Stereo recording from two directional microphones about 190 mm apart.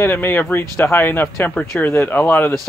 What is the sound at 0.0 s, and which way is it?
Speech, 10° left (ahead or behind).